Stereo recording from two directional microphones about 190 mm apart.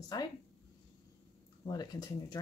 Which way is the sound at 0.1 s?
20° left (ahead or behind).